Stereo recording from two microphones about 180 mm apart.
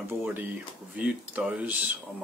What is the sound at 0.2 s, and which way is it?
Speech, 10° right (ahead or behind).